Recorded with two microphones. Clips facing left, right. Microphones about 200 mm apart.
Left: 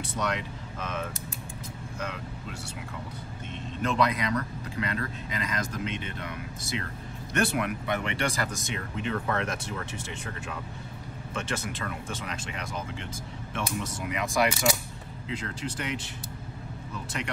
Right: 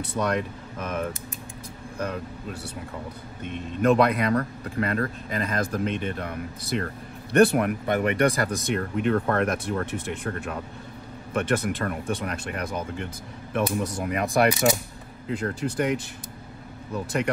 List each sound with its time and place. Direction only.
0.0 s a man's voice: 55° right (ahead or behind)
3.4 s a man's voice: 55° right (ahead or behind)